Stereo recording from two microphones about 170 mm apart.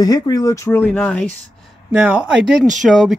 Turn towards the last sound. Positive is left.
turn(degrees=0)  # may be behind; listen again after turning